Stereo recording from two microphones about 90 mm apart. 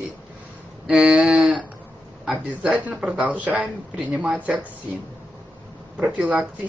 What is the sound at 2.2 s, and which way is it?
A woman's voice, 10° right (ahead or behind).